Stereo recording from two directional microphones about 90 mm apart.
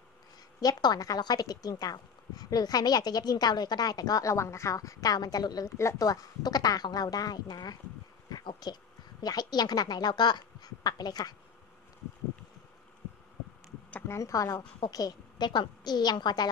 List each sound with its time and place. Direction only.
0.6 s a woman's voice: 45° left (ahead or behind)
14.0 s a woman's voice: 35° left (ahead or behind); by 16.4 s 50° left (ahead or behind)